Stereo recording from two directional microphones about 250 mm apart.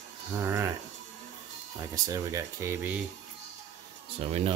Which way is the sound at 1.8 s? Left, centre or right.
Centre.